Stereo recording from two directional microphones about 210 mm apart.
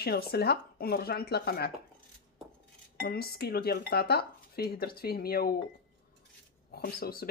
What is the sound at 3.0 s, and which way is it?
Speech, 45° left (ahead or behind).